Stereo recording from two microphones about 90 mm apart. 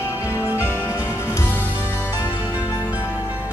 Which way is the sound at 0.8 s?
25° left (ahead or behind).